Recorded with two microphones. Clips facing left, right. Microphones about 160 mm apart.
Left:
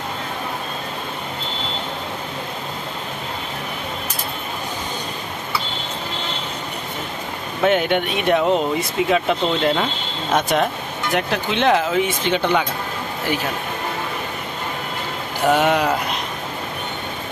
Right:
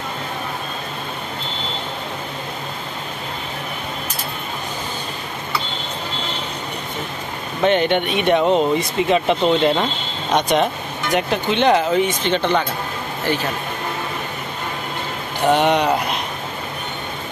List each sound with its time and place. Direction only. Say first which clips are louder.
7.6 s speech: right 1 dB; 5° left (ahead or behind)
15.4 s speech: right 1 dB; 5° left (ahead or behind)